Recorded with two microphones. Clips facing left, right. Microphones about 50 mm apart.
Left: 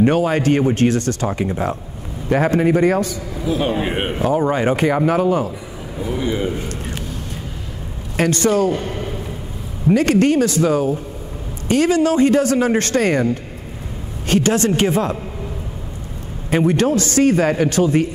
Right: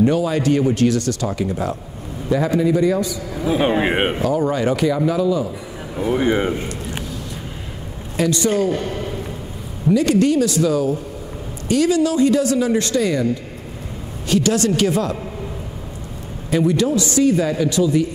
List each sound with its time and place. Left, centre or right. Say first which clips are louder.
0.0 s a man's voice: left 2 dB; left
2.2 s a man's voice: left 2 dB; left
3.3 s speech: right 2 dB; centre
4.2 s a man's voice: left 1 dB; left
5.9 s speech: right 4 dB; right
8.2 s a man's voice: left 2 dB; left
8.7 s a man's voice: even; centre
9.8 s a man's voice: left 1 dB; left
16.4 s a man's voice: left 1 dB; left